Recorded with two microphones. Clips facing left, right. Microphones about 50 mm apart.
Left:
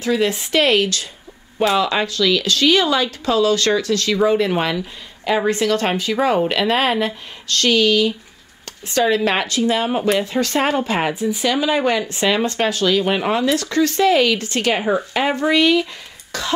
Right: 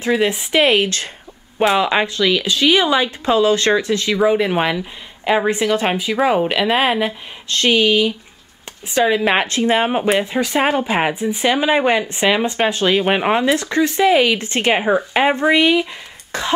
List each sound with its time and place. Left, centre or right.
0.0 s speech: right
0.8 s speech: right
1.6 s speech: right
7.4 s speech: right
9.5 s speech: right